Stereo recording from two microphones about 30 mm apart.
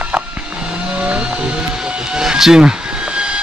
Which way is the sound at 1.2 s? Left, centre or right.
Right.